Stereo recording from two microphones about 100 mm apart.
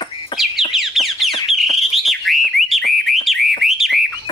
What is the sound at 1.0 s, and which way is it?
Bird, centre (ahead or behind).